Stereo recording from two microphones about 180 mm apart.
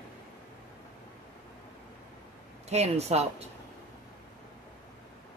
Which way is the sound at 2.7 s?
35° right (ahead or behind).